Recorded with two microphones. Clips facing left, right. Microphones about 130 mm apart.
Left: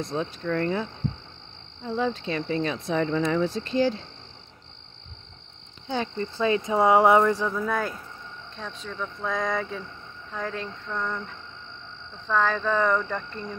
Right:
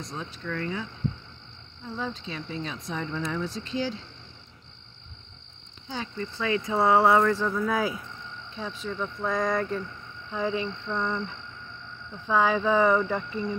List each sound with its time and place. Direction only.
0.0 s speech: 60° left (ahead or behind)
0.4 s speech: 45° left (ahead or behind)
1.9 s cricket: 70° left (ahead or behind); by 4.0 s 50° left (ahead or behind)
6.3 s speech: 25° left (ahead or behind)
7.4 s speech: centre (ahead or behind)
12.3 s cricket: 10° right (ahead or behind)